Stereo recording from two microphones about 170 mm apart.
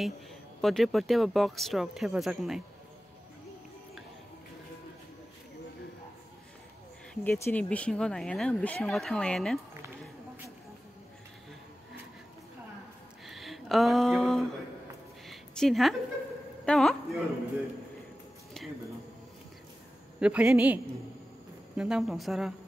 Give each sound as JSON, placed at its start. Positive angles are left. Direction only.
{"t": 0.6, "sound": "speech", "side_deg": 0}
{"t": 7.2, "sound": "speech", "side_deg": 15}
{"t": 13.3, "sound": "a sound", "side_deg": 0}
{"t": 16.6, "sound": "speech", "side_deg": 0}
{"t": 20.2, "sound": "a man's voice", "side_deg": -5}